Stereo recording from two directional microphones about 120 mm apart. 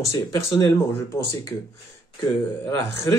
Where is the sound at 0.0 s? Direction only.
25° left (ahead or behind).